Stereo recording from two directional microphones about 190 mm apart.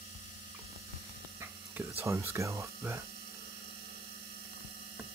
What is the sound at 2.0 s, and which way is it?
Speech, 15° right (ahead or behind).